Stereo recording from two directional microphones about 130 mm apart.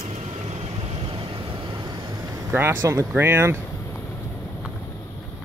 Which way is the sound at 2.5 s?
15° right (ahead or behind).